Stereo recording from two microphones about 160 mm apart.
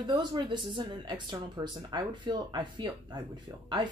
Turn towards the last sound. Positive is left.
turn(degrees=-25)  # may be behind; listen again after turning